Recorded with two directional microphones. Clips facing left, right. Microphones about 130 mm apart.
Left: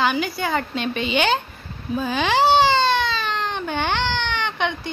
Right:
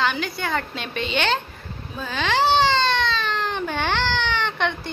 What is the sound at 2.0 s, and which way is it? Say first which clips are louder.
Baby cry: left 3 dB; 10° left (ahead or behind).